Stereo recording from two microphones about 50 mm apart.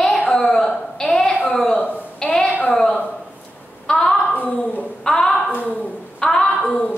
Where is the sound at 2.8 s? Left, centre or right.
Centre.